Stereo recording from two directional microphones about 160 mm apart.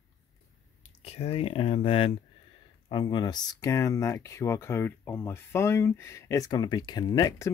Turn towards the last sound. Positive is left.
turn(degrees=20)  # may be behind; listen again after turning